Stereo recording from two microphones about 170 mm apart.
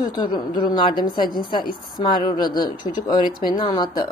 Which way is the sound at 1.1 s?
60° left (ahead or behind).